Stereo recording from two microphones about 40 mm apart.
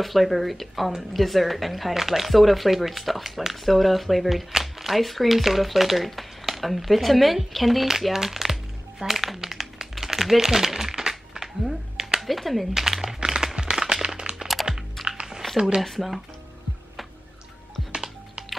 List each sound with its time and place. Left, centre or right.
0.0 s speech: centre
9.0 s crumpling: centre
12.2 s speech: centre
12.7 s speech: centre
13.0 s a sound: centre
15.8 s speech: centre
17.9 s music: right